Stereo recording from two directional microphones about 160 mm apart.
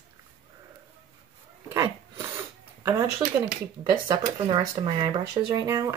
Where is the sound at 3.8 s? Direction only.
25° right (ahead or behind).